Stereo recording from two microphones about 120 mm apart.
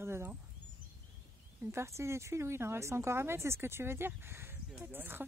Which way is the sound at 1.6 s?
20° right (ahead or behind).